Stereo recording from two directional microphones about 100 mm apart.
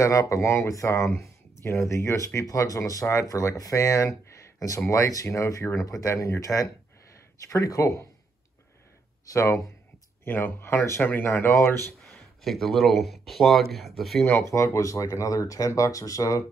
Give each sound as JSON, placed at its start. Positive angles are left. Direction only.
{"t": 0.0, "sound": "speech", "side_deg": 30}
{"t": 9.2, "sound": "speech", "side_deg": 35}
{"t": 12.1, "sound": "speech", "side_deg": 5}
{"t": 14.5, "sound": "speech", "side_deg": 30}